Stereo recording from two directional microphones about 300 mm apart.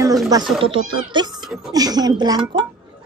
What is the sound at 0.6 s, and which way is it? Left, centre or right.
A woman's voice, centre.